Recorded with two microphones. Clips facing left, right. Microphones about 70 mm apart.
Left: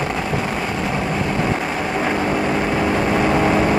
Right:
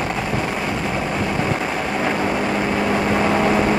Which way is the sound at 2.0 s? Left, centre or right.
Centre.